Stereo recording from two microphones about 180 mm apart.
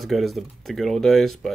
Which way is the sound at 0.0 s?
Centre (ahead or behind).